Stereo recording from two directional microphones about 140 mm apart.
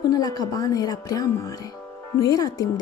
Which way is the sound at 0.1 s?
30° left (ahead or behind).